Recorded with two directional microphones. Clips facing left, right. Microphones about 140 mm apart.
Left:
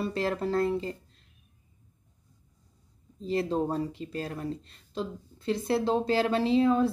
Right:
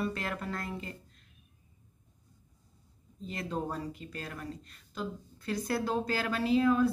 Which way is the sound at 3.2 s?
30° left (ahead or behind).